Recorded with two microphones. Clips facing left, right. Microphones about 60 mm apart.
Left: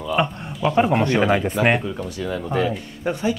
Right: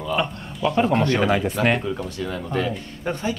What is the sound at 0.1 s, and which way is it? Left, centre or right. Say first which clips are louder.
Speech: left 3 dB; centre.